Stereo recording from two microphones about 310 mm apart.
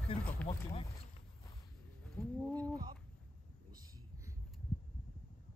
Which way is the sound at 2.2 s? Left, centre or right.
Centre.